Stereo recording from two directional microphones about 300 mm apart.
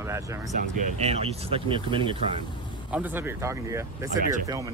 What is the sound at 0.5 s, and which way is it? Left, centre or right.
Speech, right.